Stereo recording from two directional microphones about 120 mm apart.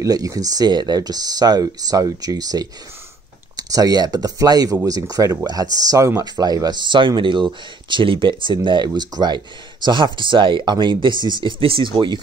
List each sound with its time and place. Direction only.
0.0 s speech: 30° right (ahead or behind)